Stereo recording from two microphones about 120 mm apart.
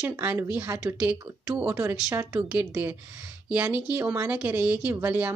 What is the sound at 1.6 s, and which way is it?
A woman's voice, 20° right (ahead or behind).